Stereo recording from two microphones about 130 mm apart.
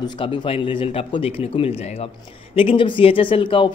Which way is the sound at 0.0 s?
40° left (ahead or behind).